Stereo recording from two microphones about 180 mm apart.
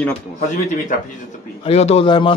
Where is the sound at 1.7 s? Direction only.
35° left (ahead or behind).